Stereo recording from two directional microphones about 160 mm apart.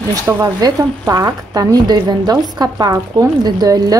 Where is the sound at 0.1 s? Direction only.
20° right (ahead or behind).